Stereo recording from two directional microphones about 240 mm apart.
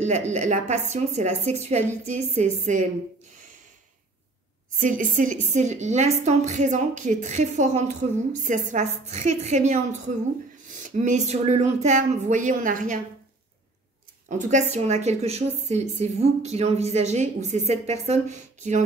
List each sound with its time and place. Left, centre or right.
0.3 s a woman's voice: right
4.7 s a woman's voice: right
14.5 s a woman's voice: right